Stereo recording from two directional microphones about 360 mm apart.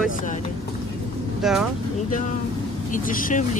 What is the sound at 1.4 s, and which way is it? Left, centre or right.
Speech, centre.